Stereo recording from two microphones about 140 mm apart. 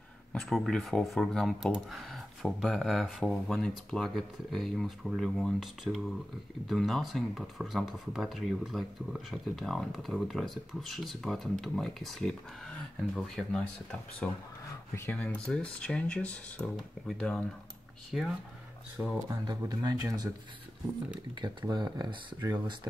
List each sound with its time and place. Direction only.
0.3 s speech: 5° left (ahead or behind)
19.2 s speech: 25° right (ahead or behind)
21.4 s speech: 30° right (ahead or behind)